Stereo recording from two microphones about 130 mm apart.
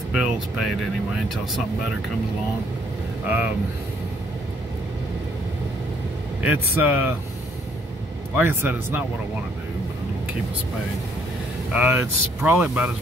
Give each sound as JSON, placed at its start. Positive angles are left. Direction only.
{"t": 0.1, "sound": "music", "side_deg": -5}
{"t": 3.3, "sound": "speech", "side_deg": -15}
{"t": 6.4, "sound": "speech", "side_deg": -15}
{"t": 8.4, "sound": "speech", "side_deg": -15}
{"t": 11.7, "sound": "speech", "side_deg": -15}